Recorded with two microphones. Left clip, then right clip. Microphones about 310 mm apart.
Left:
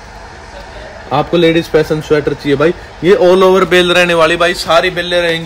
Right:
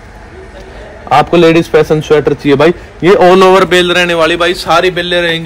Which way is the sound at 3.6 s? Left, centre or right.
Centre.